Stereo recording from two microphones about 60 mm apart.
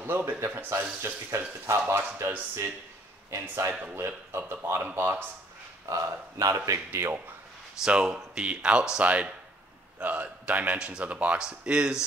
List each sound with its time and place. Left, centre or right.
0.0 s speech: right
3.3 s speech: right
5.9 s speech: right
6.9 s speech: right
7.8 s a man's voice: centre
10.8 s speech: centre